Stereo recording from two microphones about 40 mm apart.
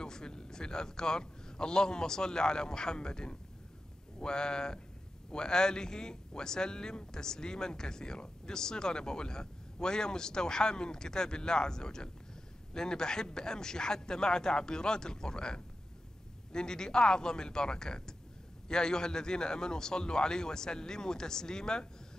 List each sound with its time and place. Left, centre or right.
0.0 s speech: centre